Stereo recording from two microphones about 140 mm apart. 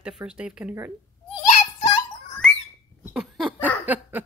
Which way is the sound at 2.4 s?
5° left (ahead or behind).